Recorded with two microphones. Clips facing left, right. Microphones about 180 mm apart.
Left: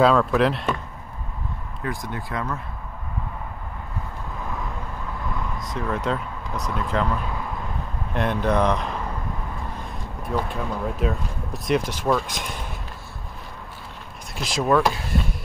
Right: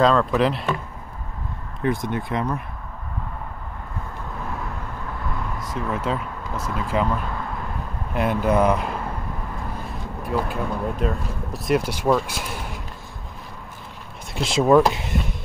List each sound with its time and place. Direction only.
0.0 s speech: 5° left (ahead or behind)
1.8 s speech: 20° right (ahead or behind)
5.7 s speech: 5° right (ahead or behind)
8.1 s speech: 5° right (ahead or behind)
10.2 s speech: centre (ahead or behind)
14.3 s speech: 25° right (ahead or behind)